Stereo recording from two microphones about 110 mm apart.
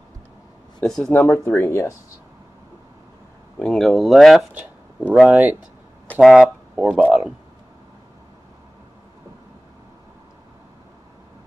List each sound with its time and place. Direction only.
0.7 s speech: 5° left (ahead or behind)
1.1 s speech: 20° left (ahead or behind)
3.5 s speech: 5° left (ahead or behind); by 7.3 s 10° right (ahead or behind)